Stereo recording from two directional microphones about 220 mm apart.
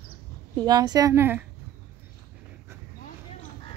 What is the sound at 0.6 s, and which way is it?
Speech, 20° right (ahead or behind).